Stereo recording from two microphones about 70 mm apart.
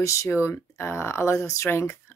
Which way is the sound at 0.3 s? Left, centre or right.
Left.